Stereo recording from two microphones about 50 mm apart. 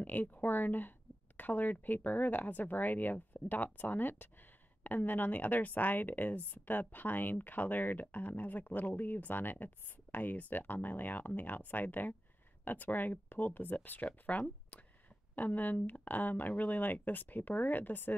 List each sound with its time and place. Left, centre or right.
0.0 s speech: left